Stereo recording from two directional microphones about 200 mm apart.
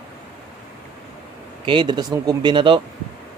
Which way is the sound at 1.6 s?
25° right (ahead or behind).